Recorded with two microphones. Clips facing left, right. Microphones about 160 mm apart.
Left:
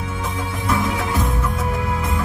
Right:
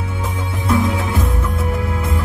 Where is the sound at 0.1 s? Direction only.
30° right (ahead or behind).